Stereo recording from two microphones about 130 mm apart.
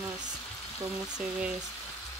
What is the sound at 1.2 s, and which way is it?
Speech, 10° right (ahead or behind).